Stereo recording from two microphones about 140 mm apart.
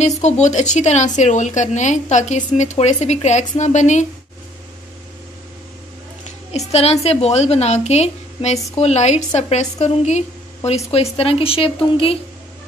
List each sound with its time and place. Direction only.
0.2 s a woman's voice: 55° left (ahead or behind)
6.5 s a woman's voice: 50° left (ahead or behind)